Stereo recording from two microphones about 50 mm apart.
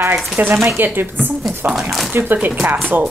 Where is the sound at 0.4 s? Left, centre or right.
Right.